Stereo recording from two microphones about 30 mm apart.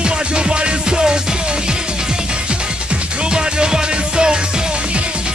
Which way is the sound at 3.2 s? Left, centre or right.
Right.